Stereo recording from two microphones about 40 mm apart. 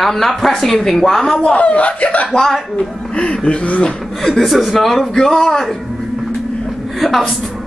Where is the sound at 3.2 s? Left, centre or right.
Left.